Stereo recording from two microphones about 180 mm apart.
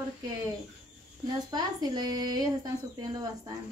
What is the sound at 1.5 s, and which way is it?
A woman's voice, 20° right (ahead or behind).